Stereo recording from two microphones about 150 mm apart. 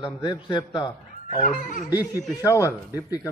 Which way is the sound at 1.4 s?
60° left (ahead or behind).